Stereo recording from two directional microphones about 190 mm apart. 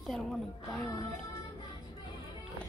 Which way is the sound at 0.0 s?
Centre (ahead or behind).